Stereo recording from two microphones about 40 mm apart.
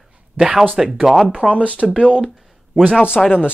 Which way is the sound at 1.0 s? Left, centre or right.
Centre.